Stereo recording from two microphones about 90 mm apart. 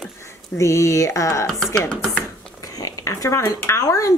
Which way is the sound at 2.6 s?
40° left (ahead or behind).